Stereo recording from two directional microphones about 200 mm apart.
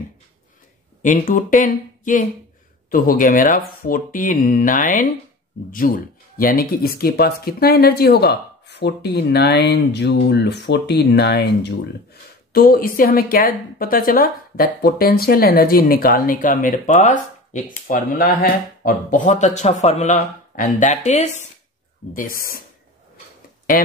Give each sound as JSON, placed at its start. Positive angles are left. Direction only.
{"t": 1.0, "sound": "speech", "side_deg": 40}